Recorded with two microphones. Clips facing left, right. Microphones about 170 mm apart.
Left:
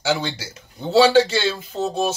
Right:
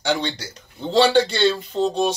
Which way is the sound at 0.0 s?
5° left (ahead or behind).